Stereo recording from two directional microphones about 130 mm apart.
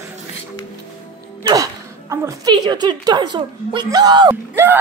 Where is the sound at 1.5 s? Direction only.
25° right (ahead or behind).